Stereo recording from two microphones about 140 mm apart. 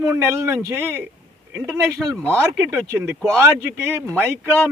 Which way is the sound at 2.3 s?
15° right (ahead or behind).